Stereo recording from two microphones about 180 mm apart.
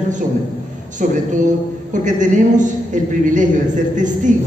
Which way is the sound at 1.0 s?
45° right (ahead or behind).